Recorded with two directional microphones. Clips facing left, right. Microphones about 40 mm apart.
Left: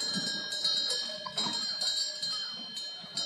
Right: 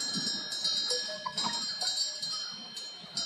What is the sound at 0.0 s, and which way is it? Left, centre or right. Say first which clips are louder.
Cowbell: left 1 dB; left.